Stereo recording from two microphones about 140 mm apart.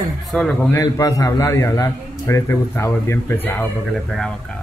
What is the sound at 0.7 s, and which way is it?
A man's voice, 25° left (ahead or behind).